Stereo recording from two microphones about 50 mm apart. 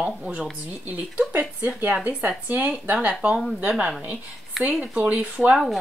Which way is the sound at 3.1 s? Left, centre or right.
Right.